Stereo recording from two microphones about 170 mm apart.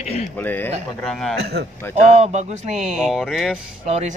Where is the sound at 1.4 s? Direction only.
75° right (ahead or behind).